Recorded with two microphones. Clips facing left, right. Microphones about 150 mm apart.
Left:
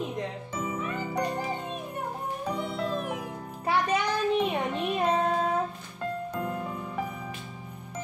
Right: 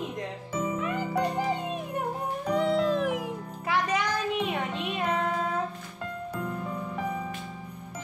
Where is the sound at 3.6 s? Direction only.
30° left (ahead or behind).